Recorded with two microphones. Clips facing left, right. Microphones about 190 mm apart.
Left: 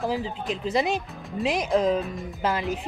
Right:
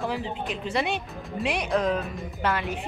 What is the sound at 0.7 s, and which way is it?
Speech, 40° left (ahead or behind).